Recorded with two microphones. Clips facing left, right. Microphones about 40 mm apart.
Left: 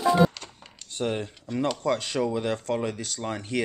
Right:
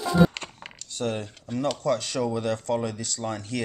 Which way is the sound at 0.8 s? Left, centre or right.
Left.